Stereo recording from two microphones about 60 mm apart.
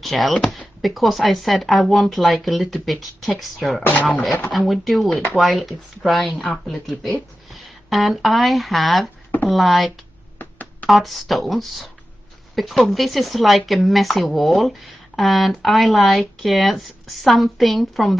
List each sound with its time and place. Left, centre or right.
0.0 s speech: centre
10.4 s a sound: left
10.9 s speech: centre